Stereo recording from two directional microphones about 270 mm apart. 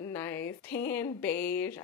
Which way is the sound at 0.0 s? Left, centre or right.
Centre.